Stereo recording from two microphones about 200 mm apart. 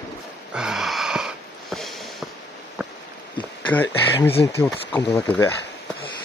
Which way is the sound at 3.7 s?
10° left (ahead or behind).